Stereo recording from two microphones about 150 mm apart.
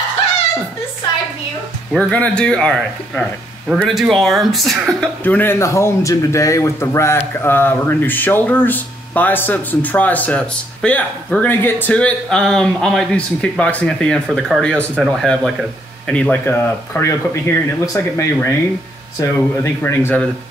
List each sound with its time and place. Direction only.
1.9 s speech: 10° left (ahead or behind)